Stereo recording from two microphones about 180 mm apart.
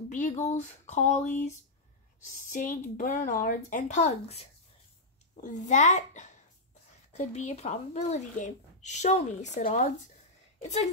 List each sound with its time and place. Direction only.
0.1 s speech: 40° left (ahead or behind)
2.5 s speech: 50° left (ahead or behind)